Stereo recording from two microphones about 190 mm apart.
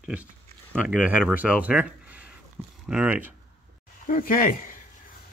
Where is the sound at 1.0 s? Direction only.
5° right (ahead or behind).